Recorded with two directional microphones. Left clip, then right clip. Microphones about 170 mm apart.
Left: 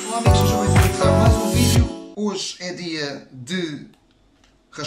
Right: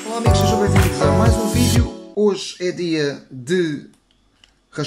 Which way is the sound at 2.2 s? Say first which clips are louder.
Right 9 dB; 45° right (ahead or behind).